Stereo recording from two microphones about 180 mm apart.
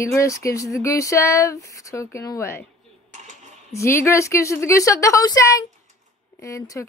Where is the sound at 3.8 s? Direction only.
15° left (ahead or behind).